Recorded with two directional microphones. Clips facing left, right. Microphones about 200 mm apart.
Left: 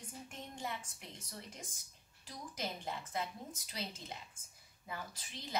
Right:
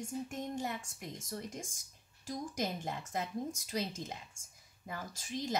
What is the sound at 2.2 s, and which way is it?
A woman's voice, 45° right (ahead or behind).